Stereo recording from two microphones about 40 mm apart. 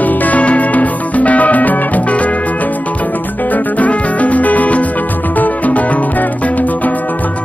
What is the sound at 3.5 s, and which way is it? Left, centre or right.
Music, left.